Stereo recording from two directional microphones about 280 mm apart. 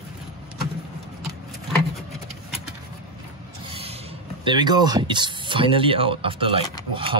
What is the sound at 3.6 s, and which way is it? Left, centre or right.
Rub, right.